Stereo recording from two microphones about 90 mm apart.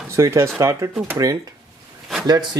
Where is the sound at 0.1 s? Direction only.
30° right (ahead or behind).